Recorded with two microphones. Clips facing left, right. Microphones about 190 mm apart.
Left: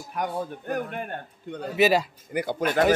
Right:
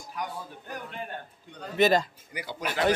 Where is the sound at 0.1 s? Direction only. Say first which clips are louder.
Left 7 dB; 55° left (ahead or behind).